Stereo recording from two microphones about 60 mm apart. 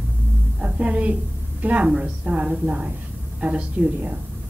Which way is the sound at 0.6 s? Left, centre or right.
Right.